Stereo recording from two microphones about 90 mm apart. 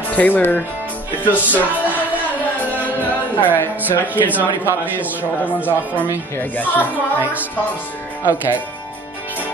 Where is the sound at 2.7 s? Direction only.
20° left (ahead or behind).